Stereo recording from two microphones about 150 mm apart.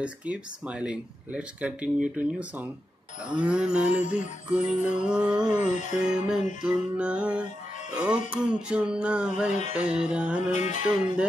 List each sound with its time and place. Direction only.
0.0 s speech: 10° right (ahead or behind)
5.9 s music: 5° right (ahead or behind)
6.6 s speech: 5° right (ahead or behind)
10.5 s music: 55° left (ahead or behind)